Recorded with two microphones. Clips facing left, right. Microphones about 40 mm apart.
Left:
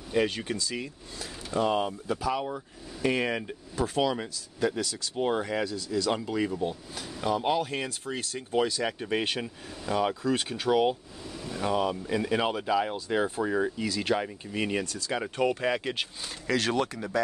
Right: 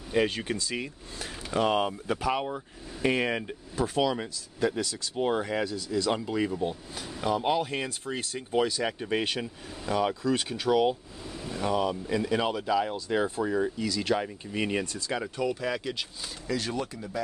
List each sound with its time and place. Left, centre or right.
0.1 s speech: centre
0.6 s speech: right
2.4 s speech: centre
15.6 s speech: left
16.4 s speech: left